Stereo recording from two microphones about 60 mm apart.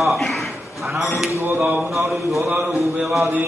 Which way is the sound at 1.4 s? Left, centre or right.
Right.